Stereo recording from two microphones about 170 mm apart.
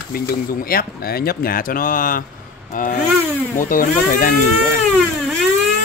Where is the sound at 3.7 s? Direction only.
55° left (ahead or behind).